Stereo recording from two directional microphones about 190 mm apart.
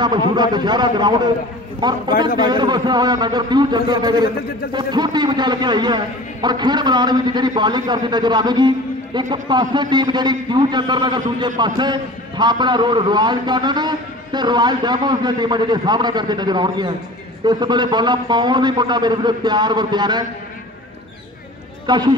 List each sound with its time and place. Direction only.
0.4 s a man's voice: 20° right (ahead or behind)
21.8 s a man's voice: 20° right (ahead or behind)